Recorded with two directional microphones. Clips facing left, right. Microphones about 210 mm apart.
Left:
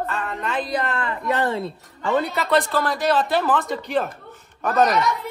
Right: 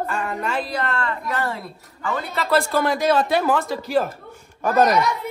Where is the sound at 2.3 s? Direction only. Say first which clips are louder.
Even; centre (ahead or behind).